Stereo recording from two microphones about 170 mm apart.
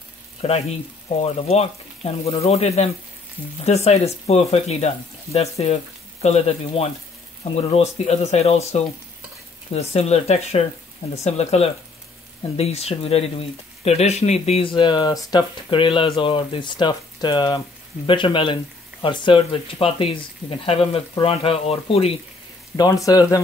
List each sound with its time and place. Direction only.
0.4 s speech: 35° left (ahead or behind)
22.8 s speech: 20° left (ahead or behind)